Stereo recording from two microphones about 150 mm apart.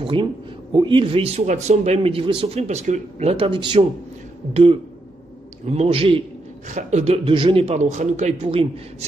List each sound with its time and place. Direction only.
0.0 s speech: 35° right (ahead or behind)
5.7 s speech: 40° right (ahead or behind)
6.7 s a man's voice: 55° right (ahead or behind)